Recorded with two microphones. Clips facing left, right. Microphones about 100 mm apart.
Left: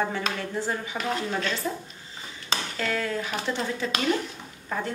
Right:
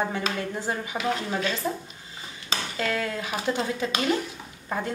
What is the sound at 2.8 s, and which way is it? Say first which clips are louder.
Speech: right 1 dB; 10° right (ahead or behind).